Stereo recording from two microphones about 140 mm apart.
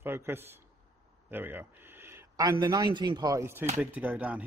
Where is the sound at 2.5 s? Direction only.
30° right (ahead or behind); by 4.5 s 10° right (ahead or behind).